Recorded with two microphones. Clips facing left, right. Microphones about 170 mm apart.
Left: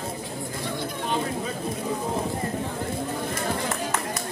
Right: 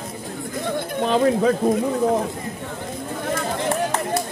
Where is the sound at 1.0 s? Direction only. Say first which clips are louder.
Right 12 dB; 80° right.